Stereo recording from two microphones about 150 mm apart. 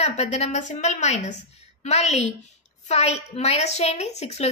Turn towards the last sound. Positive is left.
turn(degrees=45)  # may be behind; listen again after turning